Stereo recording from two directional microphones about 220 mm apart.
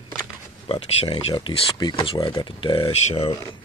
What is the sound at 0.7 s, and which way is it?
Speech, 25° left (ahead or behind).